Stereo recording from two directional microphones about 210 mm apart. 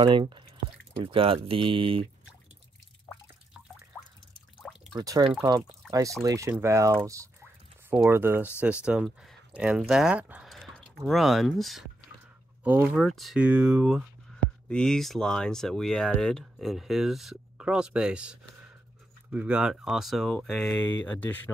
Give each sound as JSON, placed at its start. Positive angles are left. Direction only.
{"t": 0.0, "sound": "speech", "side_deg": -20}
{"t": 4.9, "sound": "speech", "side_deg": -20}